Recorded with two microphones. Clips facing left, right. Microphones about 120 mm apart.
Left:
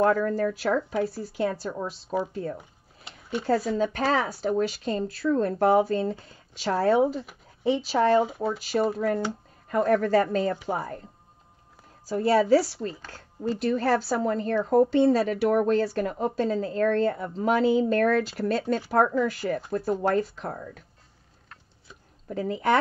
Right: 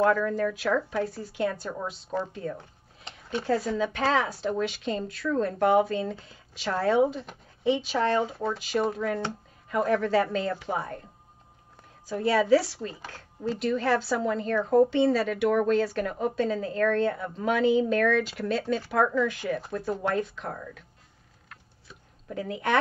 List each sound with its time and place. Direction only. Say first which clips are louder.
0.1 s a woman's voice: left 1 dB; 35° left (ahead or behind)
3.0 s a sound: left 1 dB; 10° left (ahead or behind)
3.4 s a woman's voice: left 2 dB; 40° left (ahead or behind)
8.3 s speech: left 2 dB; 5° left (ahead or behind)
9.7 s a woman's voice: left 3 dB; 45° left (ahead or behind)
12.1 s a woman's voice: left 2 dB; 40° left (ahead or behind)
22.4 s a woman's voice: left 4 dB; 35° left (ahead or behind)